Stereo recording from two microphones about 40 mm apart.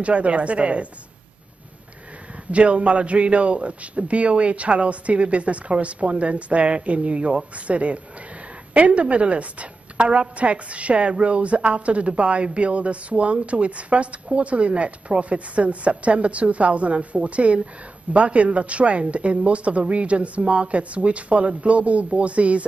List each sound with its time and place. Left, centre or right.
0.0 s a woman's voice: right
2.5 s a woman's voice: right